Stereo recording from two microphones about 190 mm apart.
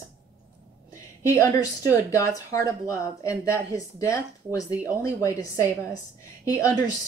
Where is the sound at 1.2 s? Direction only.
15° left (ahead or behind).